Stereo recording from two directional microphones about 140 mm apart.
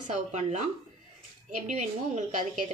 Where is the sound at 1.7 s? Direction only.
55° right (ahead or behind).